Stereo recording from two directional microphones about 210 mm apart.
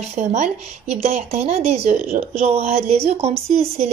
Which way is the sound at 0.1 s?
35° right (ahead or behind).